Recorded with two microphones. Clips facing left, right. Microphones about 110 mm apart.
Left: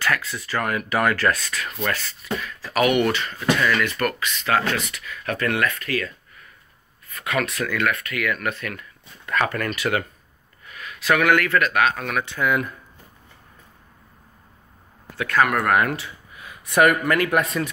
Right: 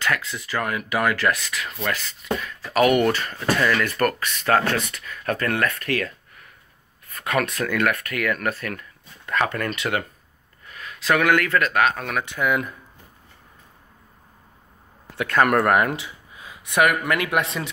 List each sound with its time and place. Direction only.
0.0 s speech: 20° right (ahead or behind)
2.7 s speech: 30° right (ahead or behind); by 5.0 s 50° right (ahead or behind)
5.2 s speech: 35° right (ahead or behind); by 6.1 s 60° right (ahead or behind)
7.2 s speech: 40° right (ahead or behind)
9.2 s speech: 20° right (ahead or behind)
15.1 s speech: 25° right (ahead or behind)
15.6 s a sound: 25° right (ahead or behind)
17.0 s speech: 15° right (ahead or behind)